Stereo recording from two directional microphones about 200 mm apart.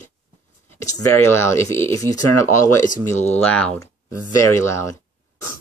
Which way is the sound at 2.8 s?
40° left (ahead or behind).